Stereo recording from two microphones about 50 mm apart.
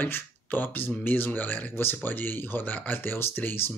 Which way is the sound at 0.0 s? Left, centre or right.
Left.